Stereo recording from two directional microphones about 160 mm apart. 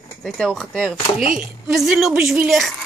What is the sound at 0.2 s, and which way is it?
A woman's voice, 5° left (ahead or behind).